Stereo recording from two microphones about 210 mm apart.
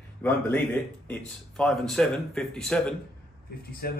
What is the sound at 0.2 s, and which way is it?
Speech, 10° left (ahead or behind).